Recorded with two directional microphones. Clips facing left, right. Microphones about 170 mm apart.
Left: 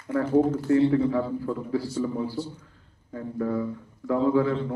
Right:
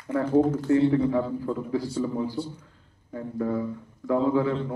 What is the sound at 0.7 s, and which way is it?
A man's voice, 25° right (ahead or behind).